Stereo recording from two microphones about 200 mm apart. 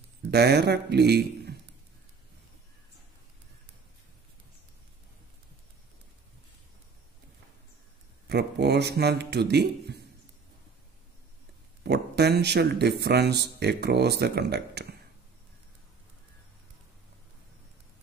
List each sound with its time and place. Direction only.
0.3 s speech: 55° right (ahead or behind)
8.3 s speech: 55° right (ahead or behind)
11.8 s speech: 55° right (ahead or behind)